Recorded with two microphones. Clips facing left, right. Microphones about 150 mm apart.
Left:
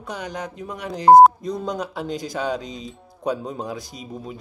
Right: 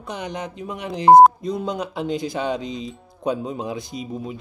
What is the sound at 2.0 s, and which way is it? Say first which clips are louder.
Speech: right 3 dB; 40° left (ahead or behind).